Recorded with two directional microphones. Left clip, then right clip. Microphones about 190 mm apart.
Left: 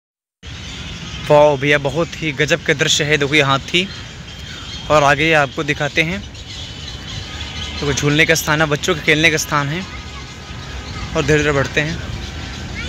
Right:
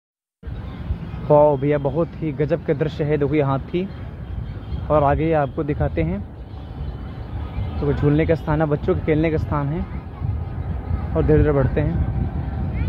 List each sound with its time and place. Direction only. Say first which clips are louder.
1.2 s speech: left 4 dB; 10° left (ahead or behind)
1.8 s speech: left 3 dB; 20° left (ahead or behind)
2.2 s speech: left 8 dB; 5° left (ahead or behind)
4.8 s speech: left 5 dB; 15° left (ahead or behind)
8.0 s speech: left 6 dB; centre (ahead or behind)
11.1 s speech: left 3 dB; 5° left (ahead or behind)